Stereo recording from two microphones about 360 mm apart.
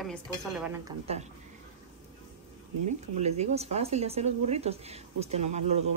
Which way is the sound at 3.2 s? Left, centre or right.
Centre.